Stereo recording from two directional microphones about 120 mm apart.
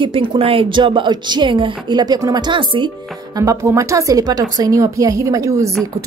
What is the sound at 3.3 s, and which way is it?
A woman's voice, 30° right (ahead or behind).